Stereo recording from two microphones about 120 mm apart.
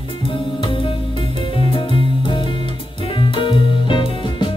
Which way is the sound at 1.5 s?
45° left (ahead or behind).